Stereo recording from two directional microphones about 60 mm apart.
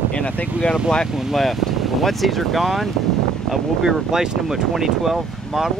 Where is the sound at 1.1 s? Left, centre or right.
Centre.